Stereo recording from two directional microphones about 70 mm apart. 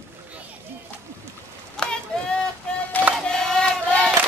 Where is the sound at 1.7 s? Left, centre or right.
Centre.